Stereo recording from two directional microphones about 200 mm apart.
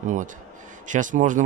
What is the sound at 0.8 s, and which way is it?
Speech, 40° right (ahead or behind).